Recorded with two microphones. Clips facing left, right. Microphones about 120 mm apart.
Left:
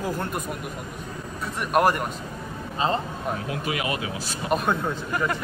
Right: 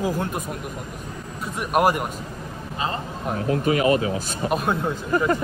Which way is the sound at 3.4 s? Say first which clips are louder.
Right 8 dB; 40° right (ahead or behind).